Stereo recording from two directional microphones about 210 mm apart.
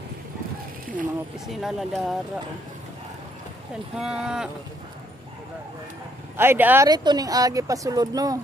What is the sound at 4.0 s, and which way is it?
Speech, 5° right (ahead or behind).